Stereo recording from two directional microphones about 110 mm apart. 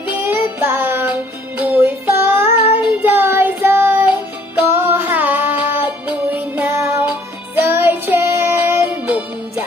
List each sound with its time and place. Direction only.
0.1 s music: 20° right (ahead or behind)
2.8 s child singing: 15° right (ahead or behind)